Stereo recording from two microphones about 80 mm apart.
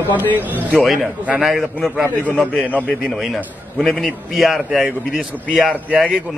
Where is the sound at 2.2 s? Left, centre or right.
Centre.